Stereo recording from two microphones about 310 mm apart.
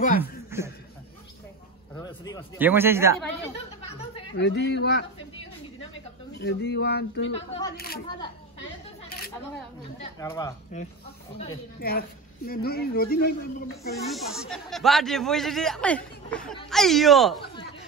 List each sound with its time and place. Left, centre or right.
0.5 s chuckle: centre
2.0 s a sound: centre
2.6 s speech: centre
4.3 s speech: left
6.3 s speech: left
10.1 s speech: centre
11.3 s speech: left
14.0 s speech: centre